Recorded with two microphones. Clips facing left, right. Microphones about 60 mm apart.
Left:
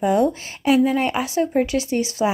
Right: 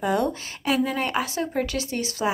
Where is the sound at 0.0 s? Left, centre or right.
Left.